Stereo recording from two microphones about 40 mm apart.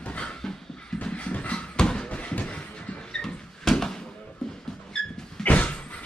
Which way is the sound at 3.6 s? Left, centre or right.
Centre.